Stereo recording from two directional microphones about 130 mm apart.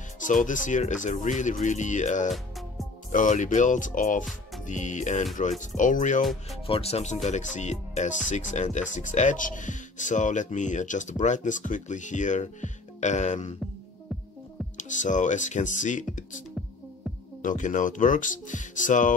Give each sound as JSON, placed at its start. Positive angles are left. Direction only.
{"t": 0.2, "sound": "speech", "side_deg": 80}
{"t": 3.1, "sound": "speech", "side_deg": 80}
{"t": 4.6, "sound": "speech", "side_deg": 70}
{"t": 6.7, "sound": "speech", "side_deg": 55}
{"t": 14.8, "sound": "speech", "side_deg": 75}